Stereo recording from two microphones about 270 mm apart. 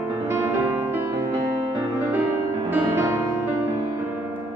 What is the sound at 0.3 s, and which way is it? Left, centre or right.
Music, centre.